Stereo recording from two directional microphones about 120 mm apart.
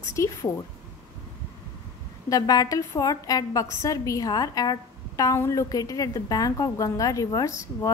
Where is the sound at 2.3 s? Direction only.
30° left (ahead or behind).